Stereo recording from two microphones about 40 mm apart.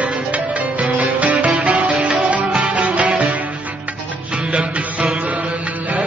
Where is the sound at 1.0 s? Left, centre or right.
Right.